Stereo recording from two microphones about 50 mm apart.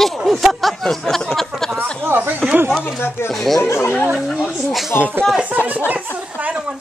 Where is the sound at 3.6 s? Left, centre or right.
Left.